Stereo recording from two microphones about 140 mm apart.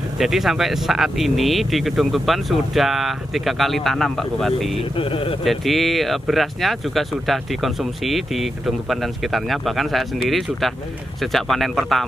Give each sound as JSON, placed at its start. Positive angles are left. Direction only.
{"t": 0.2, "sound": "speech", "side_deg": 0}
{"t": 4.9, "sound": "speech", "side_deg": 40}
{"t": 5.4, "sound": "speech", "side_deg": 0}
{"t": 11.3, "sound": "speech", "side_deg": 0}